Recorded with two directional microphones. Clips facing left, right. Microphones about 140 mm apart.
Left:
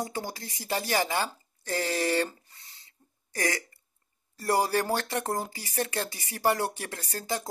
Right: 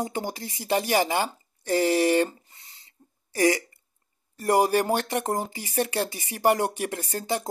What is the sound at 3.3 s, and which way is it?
Speech, 15° right (ahead or behind).